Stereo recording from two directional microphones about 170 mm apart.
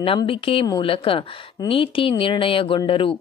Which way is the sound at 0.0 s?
35° left (ahead or behind).